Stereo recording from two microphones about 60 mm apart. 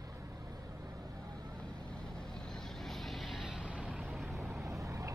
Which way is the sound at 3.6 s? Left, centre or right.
Right.